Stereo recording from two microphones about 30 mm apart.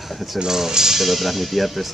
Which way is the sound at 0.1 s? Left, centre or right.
Centre.